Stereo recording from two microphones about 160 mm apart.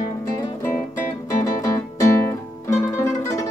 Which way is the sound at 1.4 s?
20° left (ahead or behind).